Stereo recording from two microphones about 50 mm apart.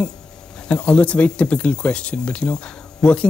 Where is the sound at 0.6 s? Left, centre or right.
Left.